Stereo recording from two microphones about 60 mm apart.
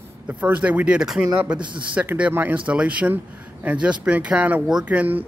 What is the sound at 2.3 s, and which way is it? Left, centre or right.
Speech, right.